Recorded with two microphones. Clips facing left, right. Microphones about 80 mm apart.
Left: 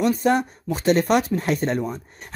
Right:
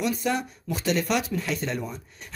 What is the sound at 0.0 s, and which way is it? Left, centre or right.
Speech, left.